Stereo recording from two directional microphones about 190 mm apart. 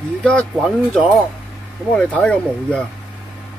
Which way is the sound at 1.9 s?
5° left (ahead or behind).